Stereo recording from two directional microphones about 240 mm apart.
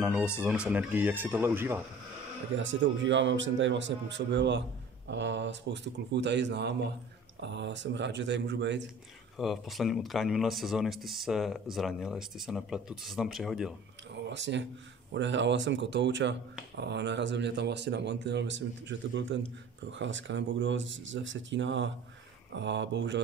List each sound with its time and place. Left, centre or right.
0.0 s speech: centre
2.5 s speech: right
9.4 s speech: centre
14.3 s speech: right